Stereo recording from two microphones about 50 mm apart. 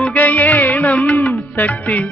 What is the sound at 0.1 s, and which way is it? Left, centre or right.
Music, left.